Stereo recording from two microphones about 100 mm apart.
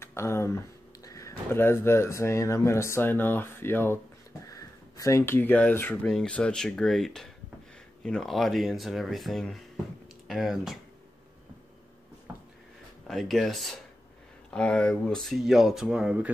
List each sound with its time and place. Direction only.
0.0 s speech: 25° left (ahead or behind)
4.5 s speech: 35° left (ahead or behind); by 10.8 s centre (ahead or behind)
13.0 s speech: centre (ahead or behind)